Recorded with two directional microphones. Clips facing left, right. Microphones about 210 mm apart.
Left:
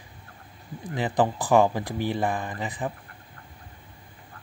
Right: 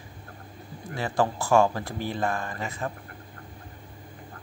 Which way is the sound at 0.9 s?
15° left (ahead or behind).